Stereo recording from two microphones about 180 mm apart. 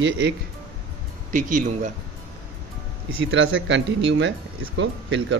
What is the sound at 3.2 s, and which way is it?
Speech, 90° right.